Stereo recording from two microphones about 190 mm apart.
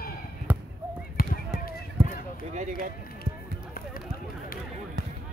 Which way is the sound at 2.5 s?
40° right (ahead or behind).